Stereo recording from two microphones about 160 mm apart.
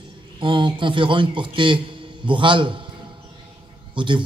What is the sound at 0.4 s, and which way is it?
Speech, 30° right (ahead or behind).